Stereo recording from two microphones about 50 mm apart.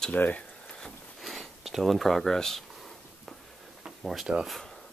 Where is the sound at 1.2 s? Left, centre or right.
Centre.